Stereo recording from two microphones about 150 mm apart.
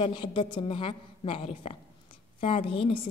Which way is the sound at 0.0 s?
35° left (ahead or behind).